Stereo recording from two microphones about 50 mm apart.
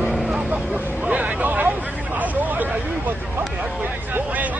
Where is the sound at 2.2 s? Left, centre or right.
Right.